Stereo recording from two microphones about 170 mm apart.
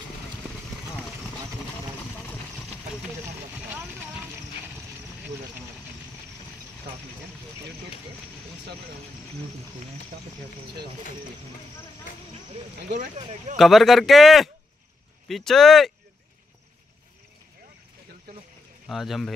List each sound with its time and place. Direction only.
3.5 s vehicle: 10° right (ahead or behind)
13.6 s speech: centre (ahead or behind)
18.9 s speech: centre (ahead or behind)